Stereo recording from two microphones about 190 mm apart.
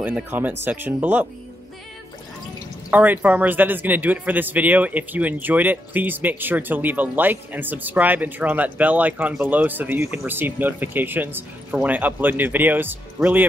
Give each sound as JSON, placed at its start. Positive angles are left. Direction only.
{"t": 0.0, "sound": "a man's voice", "side_deg": -10}
{"t": 2.9, "sound": "a man's voice", "side_deg": -10}